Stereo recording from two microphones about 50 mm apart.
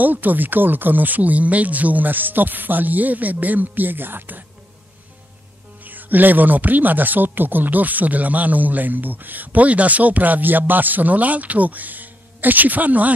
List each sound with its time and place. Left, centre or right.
0.0 s speech: right
5.9 s speech: right